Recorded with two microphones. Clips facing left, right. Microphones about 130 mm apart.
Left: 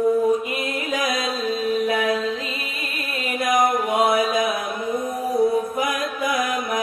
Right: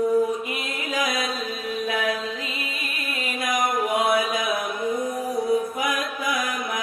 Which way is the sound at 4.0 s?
25° left (ahead or behind).